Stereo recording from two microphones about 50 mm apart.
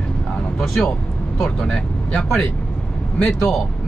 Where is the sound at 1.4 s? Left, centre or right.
Centre.